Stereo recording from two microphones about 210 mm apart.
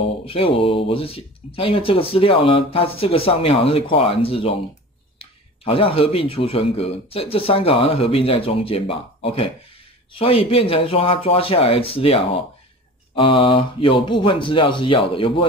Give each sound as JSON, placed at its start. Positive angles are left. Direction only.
{"t": 0.3, "sound": "speech", "side_deg": 25}